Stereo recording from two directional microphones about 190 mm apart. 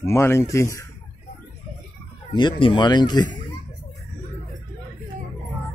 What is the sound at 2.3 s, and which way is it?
Speech, 25° left (ahead or behind).